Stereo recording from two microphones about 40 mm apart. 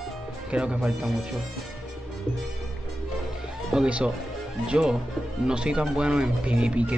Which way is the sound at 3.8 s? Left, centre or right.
Right.